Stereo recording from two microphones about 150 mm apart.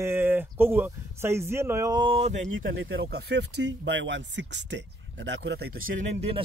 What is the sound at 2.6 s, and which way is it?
Speech, 90° right.